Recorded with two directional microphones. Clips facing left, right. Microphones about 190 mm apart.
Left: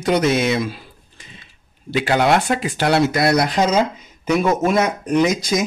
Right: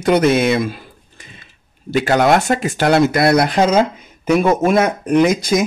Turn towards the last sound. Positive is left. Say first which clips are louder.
# right 4 dB
turn(degrees=-55)  # may be behind; listen again after turning